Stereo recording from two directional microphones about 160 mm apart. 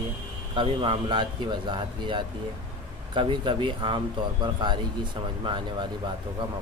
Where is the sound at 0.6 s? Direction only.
35° right (ahead or behind).